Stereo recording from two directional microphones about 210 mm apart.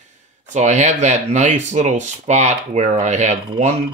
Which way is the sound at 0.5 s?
35° right (ahead or behind).